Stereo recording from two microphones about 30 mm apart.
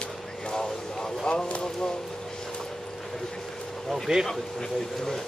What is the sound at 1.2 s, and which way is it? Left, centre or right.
Speech, left.